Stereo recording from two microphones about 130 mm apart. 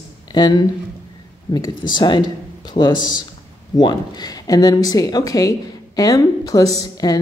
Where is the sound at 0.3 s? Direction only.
30° left (ahead or behind).